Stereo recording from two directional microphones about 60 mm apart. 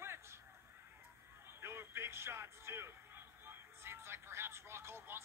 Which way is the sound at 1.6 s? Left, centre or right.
Right.